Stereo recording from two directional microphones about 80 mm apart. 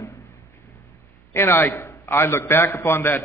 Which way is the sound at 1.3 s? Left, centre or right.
Left.